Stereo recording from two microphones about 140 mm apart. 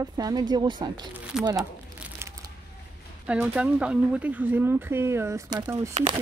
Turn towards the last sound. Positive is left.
turn(degrees=-20)  # may be behind; listen again after turning